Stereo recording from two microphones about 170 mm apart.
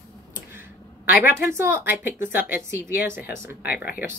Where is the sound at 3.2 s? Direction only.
65° left (ahead or behind).